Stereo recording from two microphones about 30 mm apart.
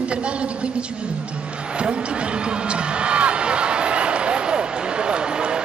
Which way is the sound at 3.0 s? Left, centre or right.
Right.